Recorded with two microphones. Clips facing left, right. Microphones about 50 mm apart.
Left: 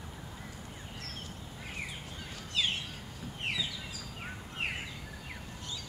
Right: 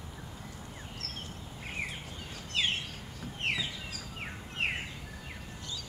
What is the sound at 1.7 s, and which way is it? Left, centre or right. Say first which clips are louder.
Bird: right 4 dB; right.